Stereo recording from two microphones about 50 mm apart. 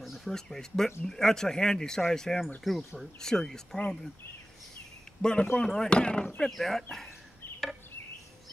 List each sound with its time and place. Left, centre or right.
0.0 s a sound: centre
0.3 s speech: centre
2.6 s speech: centre
3.0 s speech: centre
5.2 s speech: centre
6.4 s speech: centre